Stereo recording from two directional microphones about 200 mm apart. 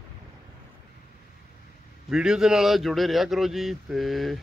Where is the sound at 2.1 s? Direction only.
5° right (ahead or behind).